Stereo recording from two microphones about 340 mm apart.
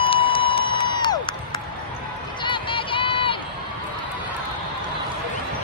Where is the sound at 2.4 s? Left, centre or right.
Centre.